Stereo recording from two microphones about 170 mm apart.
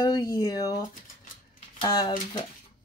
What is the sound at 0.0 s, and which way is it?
Speech, 20° left (ahead or behind).